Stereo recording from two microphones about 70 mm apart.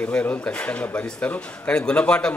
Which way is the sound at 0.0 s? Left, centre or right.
Left.